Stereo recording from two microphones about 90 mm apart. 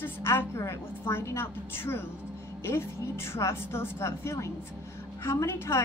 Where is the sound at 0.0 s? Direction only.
25° left (ahead or behind).